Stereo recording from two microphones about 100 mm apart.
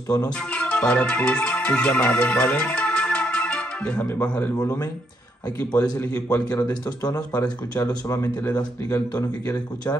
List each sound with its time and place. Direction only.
0.5 s music: 10° left (ahead or behind)
6.3 s speech: 15° left (ahead or behind)
7.3 s speech: 40° left (ahead or behind)